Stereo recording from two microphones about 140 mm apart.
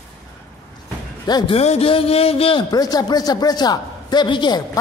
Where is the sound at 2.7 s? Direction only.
30° left (ahead or behind).